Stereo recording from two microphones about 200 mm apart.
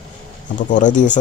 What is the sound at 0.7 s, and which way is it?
Speech, 40° left (ahead or behind).